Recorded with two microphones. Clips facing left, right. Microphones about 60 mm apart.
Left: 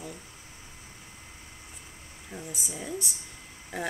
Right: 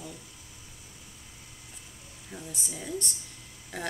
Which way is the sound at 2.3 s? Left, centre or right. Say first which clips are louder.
Left 2 dB; centre.